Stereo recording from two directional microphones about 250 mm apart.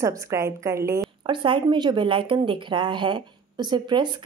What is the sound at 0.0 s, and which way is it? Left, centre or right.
Speech, centre.